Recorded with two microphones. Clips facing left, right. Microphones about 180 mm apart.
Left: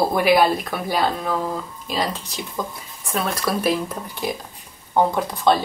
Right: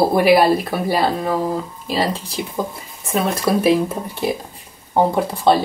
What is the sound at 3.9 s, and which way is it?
Speech, 30° right (ahead or behind).